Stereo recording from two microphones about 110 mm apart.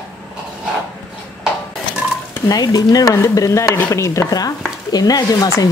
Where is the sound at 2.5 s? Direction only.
35° left (ahead or behind).